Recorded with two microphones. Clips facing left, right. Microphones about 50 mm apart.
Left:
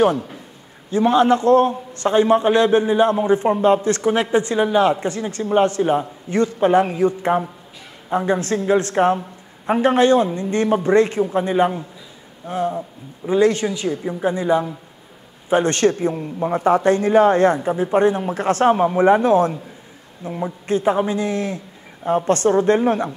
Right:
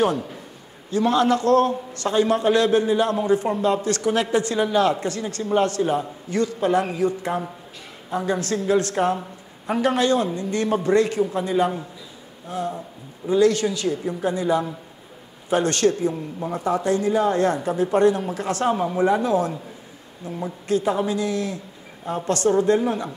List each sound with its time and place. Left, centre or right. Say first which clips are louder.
0.8 s a man's voice: left 4 dB; left
17.6 s a man's voice: left 1 dB; left
20.2 s a man's voice: left 2 dB; left